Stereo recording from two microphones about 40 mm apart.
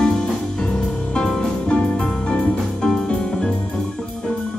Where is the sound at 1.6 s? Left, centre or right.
Left.